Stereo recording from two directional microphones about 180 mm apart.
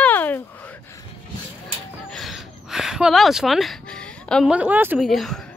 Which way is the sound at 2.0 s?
Centre (ahead or behind).